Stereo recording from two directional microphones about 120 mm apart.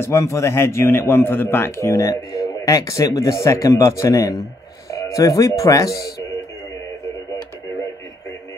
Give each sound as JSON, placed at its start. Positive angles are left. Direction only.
{"t": 0.0, "sound": "a man's voice", "side_deg": 25}